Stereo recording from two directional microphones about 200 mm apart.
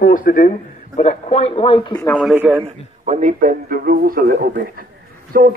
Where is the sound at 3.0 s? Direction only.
35° right (ahead or behind).